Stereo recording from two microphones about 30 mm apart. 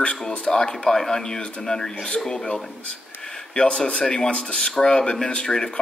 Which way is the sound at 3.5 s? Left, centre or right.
Left.